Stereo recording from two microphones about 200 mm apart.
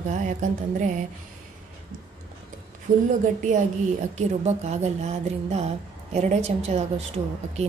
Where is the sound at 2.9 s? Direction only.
45° right (ahead or behind).